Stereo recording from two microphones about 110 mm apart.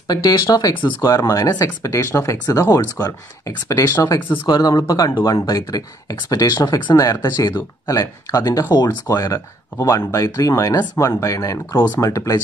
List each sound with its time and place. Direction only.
0.1 s speech: 35° left (ahead or behind)